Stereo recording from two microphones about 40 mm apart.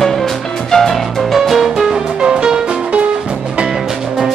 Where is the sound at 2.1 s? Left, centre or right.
Centre.